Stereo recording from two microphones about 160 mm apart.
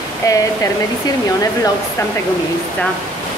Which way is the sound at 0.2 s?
20° left (ahead or behind).